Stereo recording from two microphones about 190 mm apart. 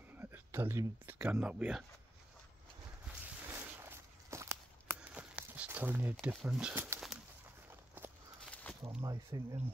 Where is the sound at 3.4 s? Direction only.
10° right (ahead or behind).